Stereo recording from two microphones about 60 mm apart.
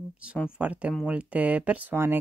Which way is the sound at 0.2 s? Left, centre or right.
Centre.